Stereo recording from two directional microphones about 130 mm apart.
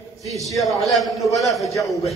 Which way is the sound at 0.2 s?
Centre (ahead or behind).